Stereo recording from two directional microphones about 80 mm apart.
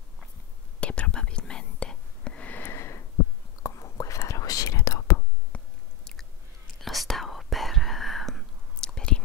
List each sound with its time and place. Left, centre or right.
0.7 s whispering: centre; by 3.0 s left
3.6 s whispering: left
5.5 s chewing: centre
6.8 s whispering: centre